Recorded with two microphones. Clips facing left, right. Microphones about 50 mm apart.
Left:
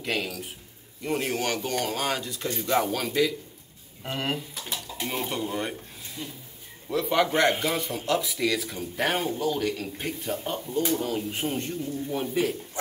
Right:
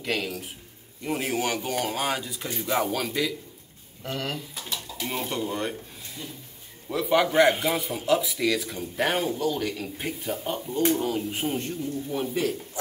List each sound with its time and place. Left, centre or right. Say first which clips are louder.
0.0 s a man's voice: right 1 dB; centre
4.0 s speech: left 2 dB; left
5.0 s speech: right 1 dB; centre